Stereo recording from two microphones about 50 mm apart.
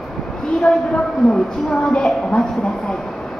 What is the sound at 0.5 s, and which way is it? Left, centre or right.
A woman's voice, centre.